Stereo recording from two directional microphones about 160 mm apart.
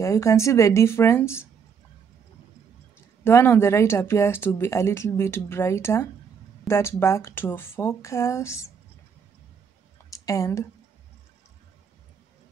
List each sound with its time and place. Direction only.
0.0 s speech: 20° left (ahead or behind)
3.3 s speech: 15° left (ahead or behind)
10.1 s speech: 20° left (ahead or behind)